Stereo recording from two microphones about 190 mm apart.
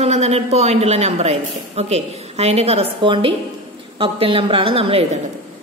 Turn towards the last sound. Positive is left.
turn(degrees=-30)  # may be behind; listen again after turning